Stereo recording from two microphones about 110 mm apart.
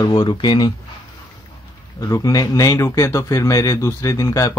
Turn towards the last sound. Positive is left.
turn(degrees=30)  # may be behind; listen again after turning